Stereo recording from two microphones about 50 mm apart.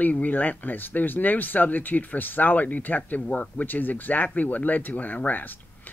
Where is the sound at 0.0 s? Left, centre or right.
Left.